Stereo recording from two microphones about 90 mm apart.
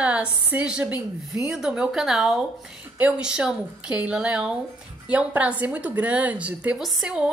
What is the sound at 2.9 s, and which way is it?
A woman's voice, 15° right (ahead or behind).